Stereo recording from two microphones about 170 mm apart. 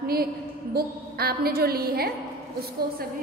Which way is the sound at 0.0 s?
60° right (ahead or behind).